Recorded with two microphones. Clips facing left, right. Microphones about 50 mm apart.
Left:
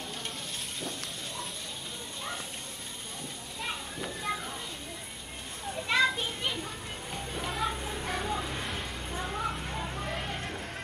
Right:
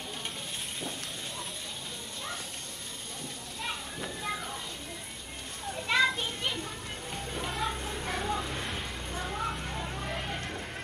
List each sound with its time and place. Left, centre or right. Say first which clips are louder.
3.6 s children playing: even; centre
5.7 s children playing: even; centre